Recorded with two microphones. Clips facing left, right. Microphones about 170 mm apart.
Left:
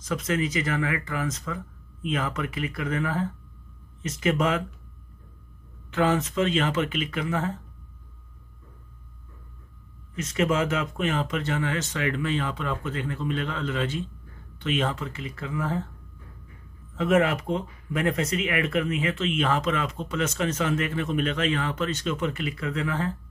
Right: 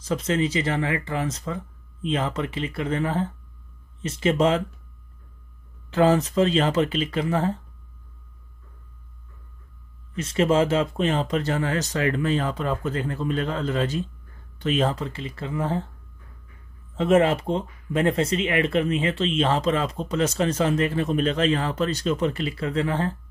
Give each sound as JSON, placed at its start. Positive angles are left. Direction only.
{"t": 0.0, "sound": "speech", "side_deg": -30}
{"t": 5.9, "sound": "speech", "side_deg": -35}
{"t": 10.1, "sound": "speech", "side_deg": -30}
{"t": 16.9, "sound": "speech", "side_deg": -30}